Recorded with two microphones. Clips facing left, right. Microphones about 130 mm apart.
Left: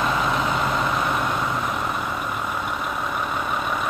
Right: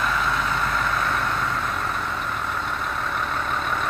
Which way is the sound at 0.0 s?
20° left (ahead or behind).